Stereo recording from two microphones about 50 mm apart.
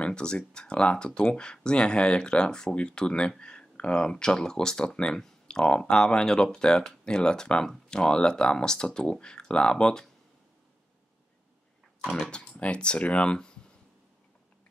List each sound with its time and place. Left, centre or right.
0.0 s speech: centre
12.1 s speech: centre